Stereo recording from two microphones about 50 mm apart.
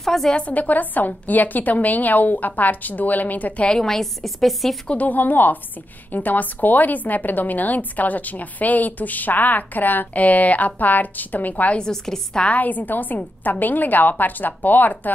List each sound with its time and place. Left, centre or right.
0.0 s a sound: centre
0.4 s a woman's voice: left
3.6 s a woman's voice: centre
4.8 s a woman's voice: left
11.9 s a woman's voice: centre
12.4 s a woman's voice: left